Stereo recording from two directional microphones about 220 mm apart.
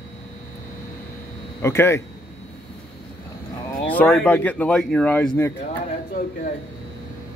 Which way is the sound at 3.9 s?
5° left (ahead or behind).